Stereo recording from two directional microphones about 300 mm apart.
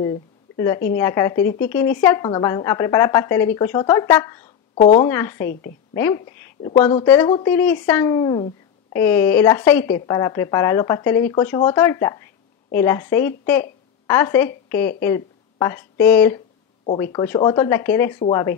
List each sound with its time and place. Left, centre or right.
0.6 s a woman's voice: centre
4.7 s speech: left
5.0 s a woman's voice: centre